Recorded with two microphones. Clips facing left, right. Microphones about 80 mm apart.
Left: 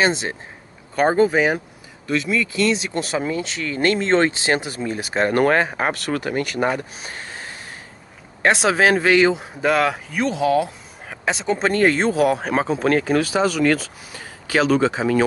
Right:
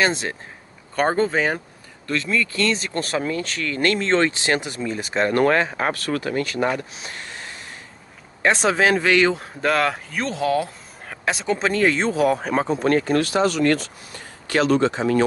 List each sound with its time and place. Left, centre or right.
0.0 s speech: centre
5.5 s speech: left
6.6 s speech: left
8.5 s speech: centre